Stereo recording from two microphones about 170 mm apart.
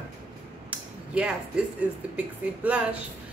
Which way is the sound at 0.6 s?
5° right (ahead or behind).